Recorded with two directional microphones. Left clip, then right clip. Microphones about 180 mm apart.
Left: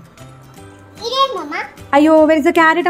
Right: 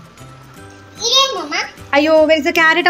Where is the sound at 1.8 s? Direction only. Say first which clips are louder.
Left 1 dB; 30° left (ahead or behind).